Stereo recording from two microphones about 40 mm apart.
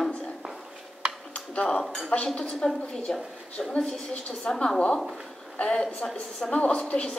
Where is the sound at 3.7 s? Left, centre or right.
Left.